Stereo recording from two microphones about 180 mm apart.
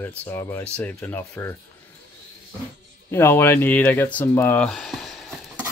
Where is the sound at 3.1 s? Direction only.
15° left (ahead or behind).